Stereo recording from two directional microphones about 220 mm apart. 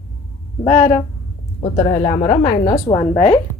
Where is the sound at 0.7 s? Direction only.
35° left (ahead or behind).